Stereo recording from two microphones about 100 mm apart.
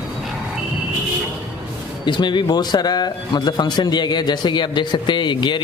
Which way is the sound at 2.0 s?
50° left (ahead or behind).